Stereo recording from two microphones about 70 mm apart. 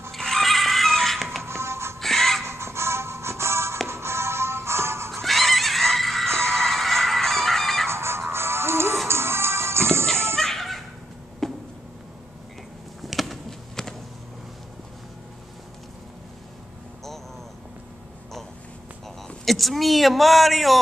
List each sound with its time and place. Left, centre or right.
0.1 s music: centre
1.4 s music: right
2.0 s music: centre
2.4 s music: right
5.2 s music: centre
7.9 s music: right
10.3 s a sound: centre
13.0 s a sound: centre
19.4 s speech: centre